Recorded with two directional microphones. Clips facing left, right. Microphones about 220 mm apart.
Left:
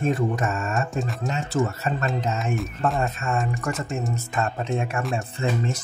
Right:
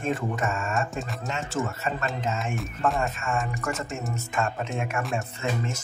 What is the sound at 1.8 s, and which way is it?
Speech, 40° left (ahead or behind).